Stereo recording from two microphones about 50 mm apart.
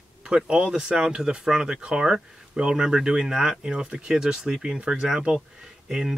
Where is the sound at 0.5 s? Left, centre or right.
Centre.